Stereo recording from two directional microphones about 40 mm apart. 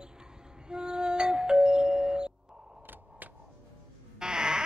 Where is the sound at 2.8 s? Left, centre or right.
Right.